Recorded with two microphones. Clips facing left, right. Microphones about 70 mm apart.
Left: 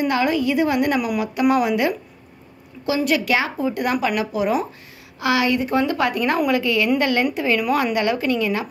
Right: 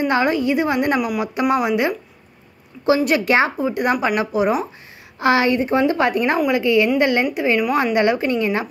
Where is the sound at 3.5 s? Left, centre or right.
Right.